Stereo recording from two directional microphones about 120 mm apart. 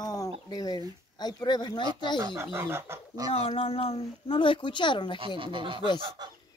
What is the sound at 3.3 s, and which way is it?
Speech, 55° left (ahead or behind).